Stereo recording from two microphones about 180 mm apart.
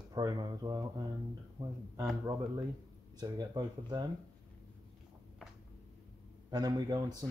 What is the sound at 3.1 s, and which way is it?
Speech, 20° right (ahead or behind).